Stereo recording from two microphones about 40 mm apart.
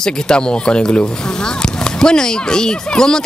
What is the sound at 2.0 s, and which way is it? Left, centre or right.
Speech, centre.